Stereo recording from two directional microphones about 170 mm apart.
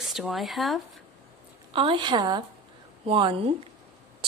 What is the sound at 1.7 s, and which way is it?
A woman's voice, 30° right (ahead or behind).